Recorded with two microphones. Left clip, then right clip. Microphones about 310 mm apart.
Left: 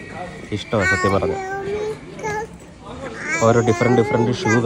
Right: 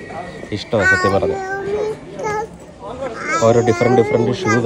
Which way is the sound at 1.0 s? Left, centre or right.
Centre.